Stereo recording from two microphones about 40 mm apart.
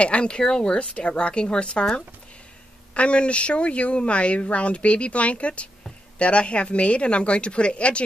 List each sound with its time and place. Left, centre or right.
0.0 s speech: left
0.7 s speech: left
2.9 s speech: left